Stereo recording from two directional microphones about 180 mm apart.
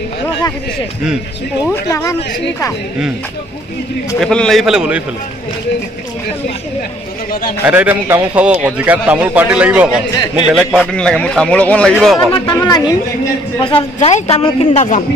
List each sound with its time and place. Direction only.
1.7 s speech: 15° left (ahead or behind)
4.2 s speech: 5° left (ahead or behind)
7.6 s a man's voice: 10° right (ahead or behind)
12.6 s a woman's voice: 20° left (ahead or behind); by 15.0 s 40° left (ahead or behind)